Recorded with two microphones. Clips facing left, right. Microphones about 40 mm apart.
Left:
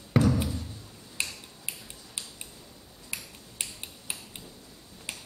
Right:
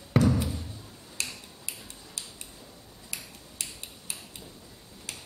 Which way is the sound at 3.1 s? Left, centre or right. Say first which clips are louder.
Left 2 dB; left.